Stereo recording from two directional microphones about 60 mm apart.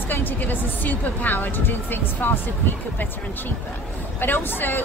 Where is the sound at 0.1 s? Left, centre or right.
Left.